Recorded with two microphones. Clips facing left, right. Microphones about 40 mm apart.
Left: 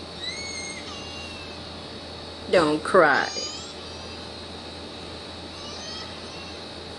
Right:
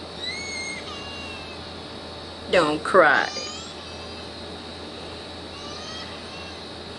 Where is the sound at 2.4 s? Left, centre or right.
Right.